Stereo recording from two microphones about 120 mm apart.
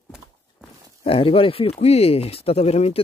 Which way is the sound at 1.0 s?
55° left (ahead or behind).